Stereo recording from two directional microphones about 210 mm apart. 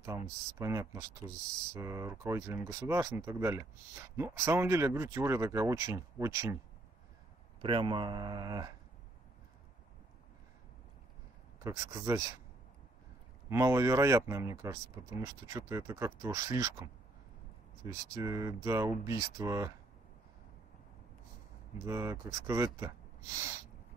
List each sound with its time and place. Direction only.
0.0 s speech: 15° right (ahead or behind)
7.6 s speech: 25° right (ahead or behind)
11.6 s speech: 15° right (ahead or behind)
13.5 s speech: 15° right (ahead or behind)
21.8 s speech: 15° right (ahead or behind)